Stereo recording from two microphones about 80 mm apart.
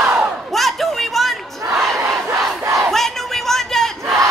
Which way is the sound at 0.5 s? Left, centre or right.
Centre.